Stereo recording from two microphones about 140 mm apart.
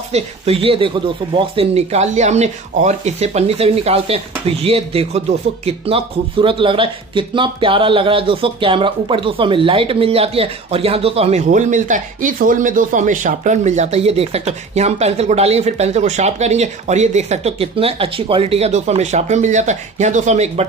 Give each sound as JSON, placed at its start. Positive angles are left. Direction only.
{"t": 0.1, "sound": "speech", "side_deg": -40}
{"t": 11.4, "sound": "speech", "side_deg": -60}